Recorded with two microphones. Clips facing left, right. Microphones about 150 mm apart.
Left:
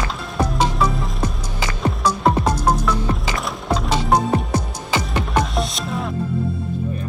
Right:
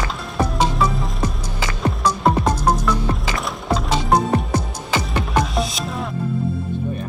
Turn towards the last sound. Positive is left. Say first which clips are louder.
# even
turn(degrees=0)  # may be behind; listen again after turning